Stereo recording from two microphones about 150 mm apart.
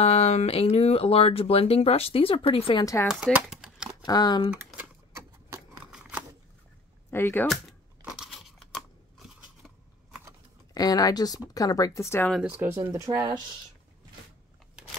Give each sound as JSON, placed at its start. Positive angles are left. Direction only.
{"t": 0.0, "sound": "speech", "side_deg": 45}
{"t": 2.8, "sound": "speech", "side_deg": 20}
{"t": 3.4, "sound": "a sound", "side_deg": -5}
{"t": 4.0, "sound": "speech", "side_deg": 25}
{"t": 5.9, "sound": "scissors", "side_deg": -10}
{"t": 7.1, "sound": "speech", "side_deg": 15}
{"t": 8.2, "sound": "scissors", "side_deg": 0}
{"t": 10.7, "sound": "speech", "side_deg": 25}
{"t": 12.4, "sound": "speech", "side_deg": -10}